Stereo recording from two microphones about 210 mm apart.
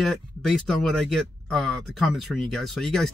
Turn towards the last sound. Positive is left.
turn(degrees=0)  # may be behind; listen again after turning